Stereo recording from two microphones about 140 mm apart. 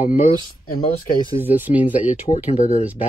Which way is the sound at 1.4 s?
15° right (ahead or behind).